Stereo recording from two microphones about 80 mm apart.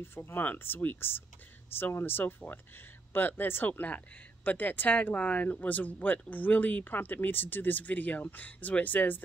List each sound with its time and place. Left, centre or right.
0.0 s speech: left